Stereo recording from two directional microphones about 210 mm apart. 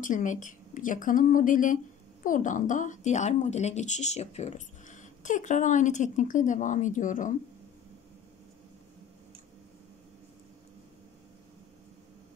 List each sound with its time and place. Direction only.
0.0 s speech: 40° left (ahead or behind)